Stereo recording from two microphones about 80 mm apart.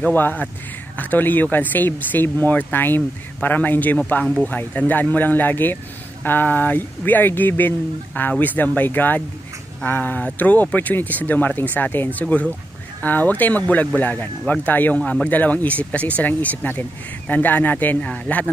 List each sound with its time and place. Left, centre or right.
0.0 s speech: left